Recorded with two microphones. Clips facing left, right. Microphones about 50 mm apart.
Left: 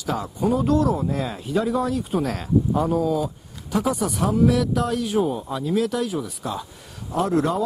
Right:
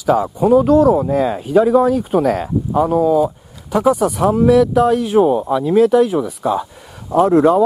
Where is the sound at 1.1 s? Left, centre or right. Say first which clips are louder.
Right 11 dB; right.